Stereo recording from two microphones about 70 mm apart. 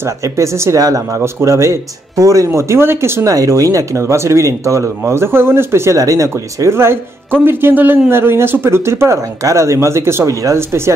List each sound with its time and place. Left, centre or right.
0.0 s speech: right
0.7 s speech: right
1.2 s speech: right
3.3 s speech: right